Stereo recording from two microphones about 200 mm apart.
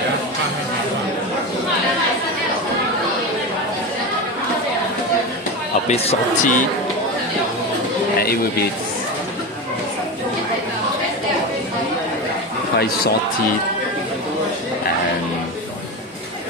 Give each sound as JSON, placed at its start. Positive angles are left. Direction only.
{"t": 5.9, "sound": "speech", "side_deg": 30}
{"t": 12.7, "sound": "speech", "side_deg": 50}